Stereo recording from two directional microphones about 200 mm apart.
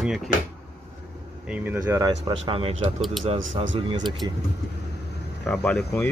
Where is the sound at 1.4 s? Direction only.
10° right (ahead or behind); by 4.0 s 25° right (ahead or behind).